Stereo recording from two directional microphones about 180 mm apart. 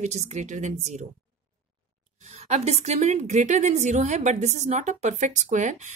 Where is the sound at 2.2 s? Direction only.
40° right (ahead or behind).